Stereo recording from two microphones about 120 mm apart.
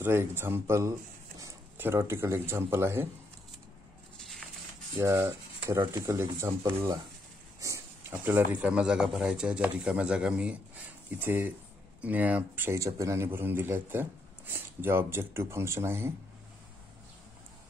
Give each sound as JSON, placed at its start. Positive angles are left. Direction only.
{"t": 0.0, "sound": "a man's voice", "side_deg": -20}
{"t": 4.9, "sound": "a man's voice", "side_deg": -20}
{"t": 7.6, "sound": "snake", "side_deg": -25}
{"t": 8.1, "sound": "a man's voice", "side_deg": -15}